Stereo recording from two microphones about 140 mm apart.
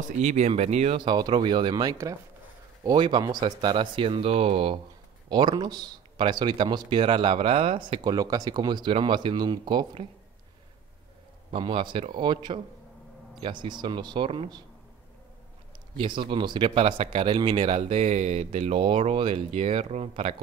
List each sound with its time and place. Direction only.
0.2 s speech: 55° right (ahead or behind)
0.9 s speech: 30° right (ahead or behind)
5.3 s speech: 30° right (ahead or behind)
11.5 s speech: 35° right (ahead or behind)
16.0 s speech: 35° right (ahead or behind)